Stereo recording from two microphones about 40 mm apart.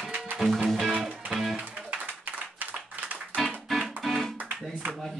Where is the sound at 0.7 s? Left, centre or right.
Centre.